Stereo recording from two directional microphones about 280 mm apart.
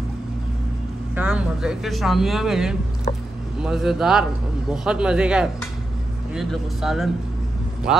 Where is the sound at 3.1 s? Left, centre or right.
Left.